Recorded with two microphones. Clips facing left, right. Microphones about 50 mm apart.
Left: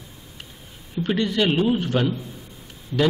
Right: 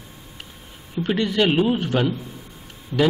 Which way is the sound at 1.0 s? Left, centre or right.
Centre.